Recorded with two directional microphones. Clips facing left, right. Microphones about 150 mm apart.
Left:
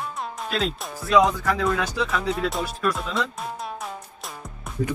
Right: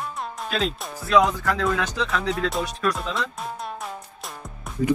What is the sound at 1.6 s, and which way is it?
Speech, 5° left (ahead or behind).